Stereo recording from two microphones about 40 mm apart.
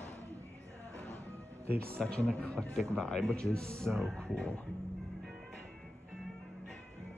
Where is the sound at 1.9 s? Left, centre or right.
Left.